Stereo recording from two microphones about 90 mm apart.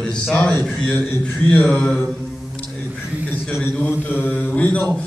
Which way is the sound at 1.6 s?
10° left (ahead or behind).